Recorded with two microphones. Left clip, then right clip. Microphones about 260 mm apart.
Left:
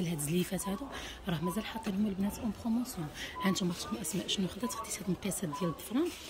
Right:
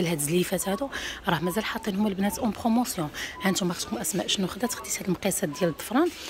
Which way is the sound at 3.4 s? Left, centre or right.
Centre.